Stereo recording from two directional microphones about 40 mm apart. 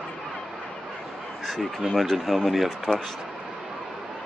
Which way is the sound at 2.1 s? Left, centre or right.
Centre.